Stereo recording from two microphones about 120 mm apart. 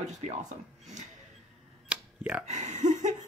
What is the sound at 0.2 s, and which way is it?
Speech, 75° right (ahead or behind).